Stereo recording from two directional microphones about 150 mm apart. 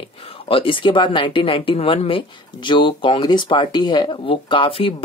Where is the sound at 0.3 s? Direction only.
35° left (ahead or behind).